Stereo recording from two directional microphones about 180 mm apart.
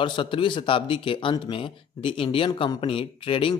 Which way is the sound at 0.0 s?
25° left (ahead or behind).